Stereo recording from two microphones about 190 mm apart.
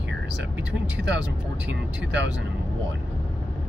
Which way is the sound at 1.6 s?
70° right (ahead or behind).